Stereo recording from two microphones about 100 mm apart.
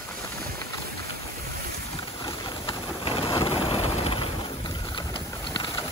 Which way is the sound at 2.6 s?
60° left (ahead or behind).